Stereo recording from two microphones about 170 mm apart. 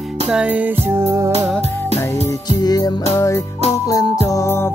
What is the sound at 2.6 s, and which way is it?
Music, 25° left (ahead or behind).